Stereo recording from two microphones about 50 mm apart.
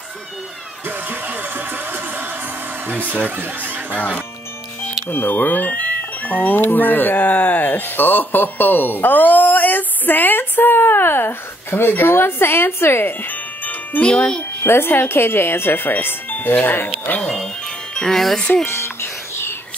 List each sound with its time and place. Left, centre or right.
0.8 s music: right
2.9 s speech: right
5.0 s speech: left
13.2 s music: left
14.0 s speech: left
14.6 s speech: left
17.2 s music: centre
18.0 s speech: centre
18.7 s music: left